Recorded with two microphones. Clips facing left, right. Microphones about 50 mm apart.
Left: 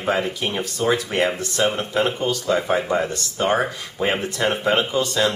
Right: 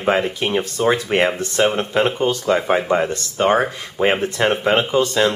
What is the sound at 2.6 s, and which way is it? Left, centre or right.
Speech, centre.